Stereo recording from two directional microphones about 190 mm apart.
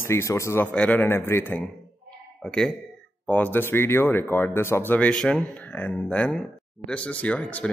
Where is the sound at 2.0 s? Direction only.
5° left (ahead or behind).